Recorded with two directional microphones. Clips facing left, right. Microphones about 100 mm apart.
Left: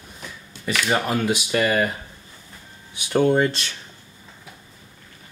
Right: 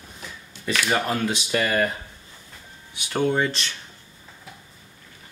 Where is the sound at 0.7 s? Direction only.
10° left (ahead or behind).